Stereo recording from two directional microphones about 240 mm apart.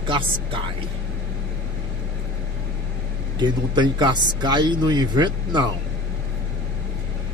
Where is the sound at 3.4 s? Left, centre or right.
Centre.